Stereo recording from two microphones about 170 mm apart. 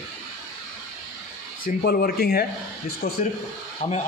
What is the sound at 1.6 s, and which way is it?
Speech, 60° left (ahead or behind).